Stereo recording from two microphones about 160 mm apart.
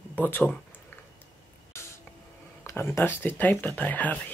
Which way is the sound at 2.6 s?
15° left (ahead or behind).